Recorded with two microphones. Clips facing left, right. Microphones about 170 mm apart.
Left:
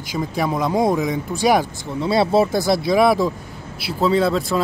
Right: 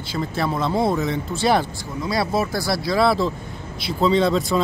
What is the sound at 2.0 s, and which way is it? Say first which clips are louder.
Speech: left 6 dB; 30° left (ahead or behind).